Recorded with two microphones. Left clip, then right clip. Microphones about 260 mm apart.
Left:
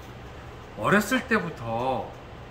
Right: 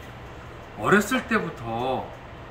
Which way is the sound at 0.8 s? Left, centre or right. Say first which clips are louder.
Right 2 dB; centre.